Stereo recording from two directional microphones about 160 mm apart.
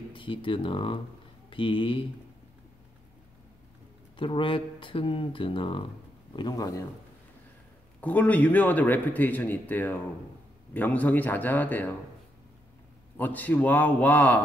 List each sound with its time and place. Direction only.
0.1 s speech: 30° left (ahead or behind)
4.2 s speech: 30° left (ahead or behind)
8.0 s speech: 10° left (ahead or behind)
13.2 s speech: 10° left (ahead or behind)